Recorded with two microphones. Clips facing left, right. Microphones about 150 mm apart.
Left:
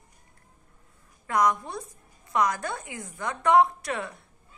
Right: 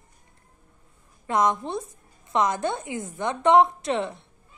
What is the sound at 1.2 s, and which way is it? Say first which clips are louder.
A woman's voice: right 2 dB; 25° right (ahead or behind).